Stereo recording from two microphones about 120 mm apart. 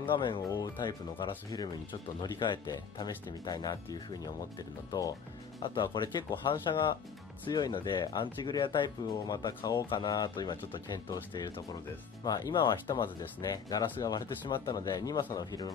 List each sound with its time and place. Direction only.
0.0 s speech: 45° left (ahead or behind)
5.6 s speech: 40° left (ahead or behind)